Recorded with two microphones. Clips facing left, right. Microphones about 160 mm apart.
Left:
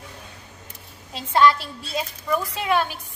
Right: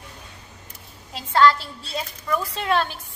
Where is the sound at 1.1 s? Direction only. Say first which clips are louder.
Even; 20° left (ahead or behind).